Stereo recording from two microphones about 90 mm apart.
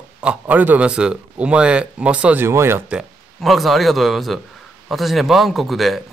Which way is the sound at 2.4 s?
30° right (ahead or behind).